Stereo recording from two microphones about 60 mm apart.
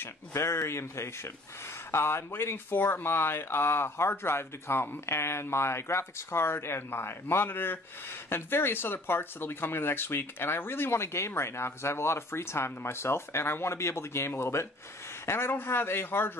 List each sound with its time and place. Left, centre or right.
0.0 s a man's voice: left